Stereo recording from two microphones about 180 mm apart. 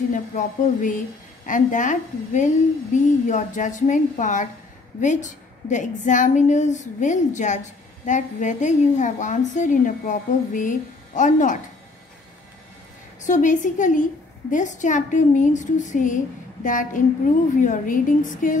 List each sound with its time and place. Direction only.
0.1 s a woman's voice: 45° left (ahead or behind)
13.2 s a woman's voice: 45° left (ahead or behind)